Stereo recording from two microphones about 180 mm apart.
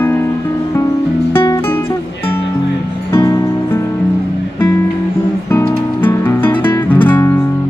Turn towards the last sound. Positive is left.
turn(degrees=10)  # may be behind; listen again after turning